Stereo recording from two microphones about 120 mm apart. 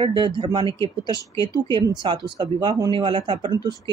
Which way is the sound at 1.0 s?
35° left (ahead or behind).